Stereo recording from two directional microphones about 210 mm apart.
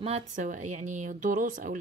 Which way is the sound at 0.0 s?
35° right (ahead or behind).